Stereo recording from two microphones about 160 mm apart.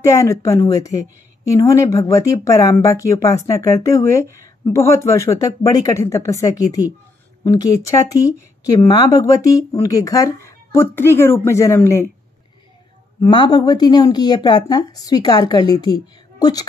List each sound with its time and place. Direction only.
0.0 s speech: 20° left (ahead or behind)
13.2 s a woman's voice: 25° left (ahead or behind)